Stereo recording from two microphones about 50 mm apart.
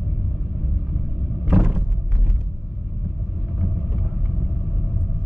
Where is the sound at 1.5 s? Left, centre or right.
Centre.